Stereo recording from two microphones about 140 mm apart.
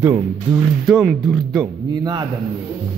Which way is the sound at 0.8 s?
Centre (ahead or behind).